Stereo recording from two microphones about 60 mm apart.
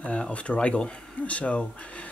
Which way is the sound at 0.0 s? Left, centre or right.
Left.